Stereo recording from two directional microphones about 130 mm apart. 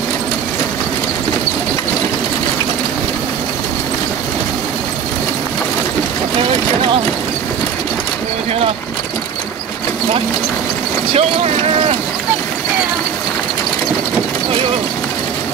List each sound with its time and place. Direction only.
11.1 s speech: 50° right (ahead or behind)